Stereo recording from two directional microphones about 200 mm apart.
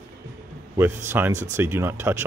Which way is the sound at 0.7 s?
10° right (ahead or behind).